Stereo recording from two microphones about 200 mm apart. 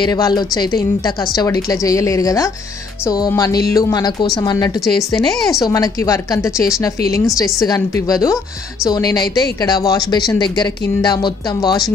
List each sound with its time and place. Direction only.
0.0 s a woman's voice: 20° left (ahead or behind)
5.7 s a woman's voice: 15° left (ahead or behind)